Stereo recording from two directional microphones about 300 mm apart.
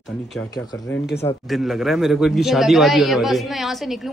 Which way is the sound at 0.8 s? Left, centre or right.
Left.